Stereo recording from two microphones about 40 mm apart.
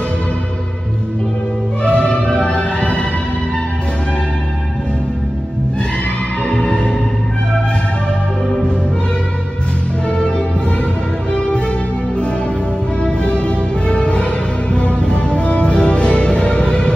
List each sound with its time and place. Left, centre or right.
1.8 s music: left
6.4 s music: left
10.0 s music: left
13.0 s music: left